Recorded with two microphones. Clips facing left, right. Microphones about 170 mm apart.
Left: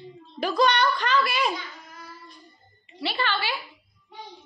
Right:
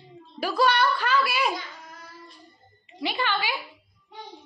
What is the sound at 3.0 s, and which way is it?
Speech, 15° right (ahead or behind).